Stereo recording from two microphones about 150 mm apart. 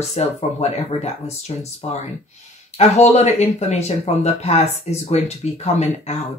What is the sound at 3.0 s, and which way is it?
Speech, 45° left (ahead or behind).